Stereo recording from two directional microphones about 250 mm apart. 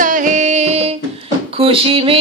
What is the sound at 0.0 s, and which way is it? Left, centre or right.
Music, right.